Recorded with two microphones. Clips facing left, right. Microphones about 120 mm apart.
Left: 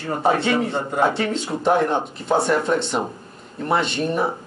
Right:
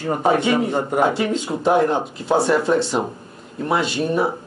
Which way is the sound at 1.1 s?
10° right (ahead or behind).